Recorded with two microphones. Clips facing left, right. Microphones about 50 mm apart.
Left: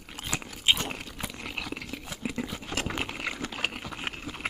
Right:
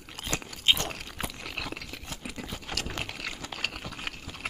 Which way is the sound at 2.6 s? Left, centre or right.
Left.